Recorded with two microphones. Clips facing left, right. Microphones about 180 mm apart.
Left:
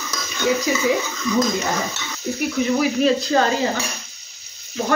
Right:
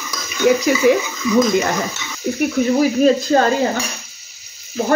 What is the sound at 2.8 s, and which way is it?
Speech, 40° right (ahead or behind).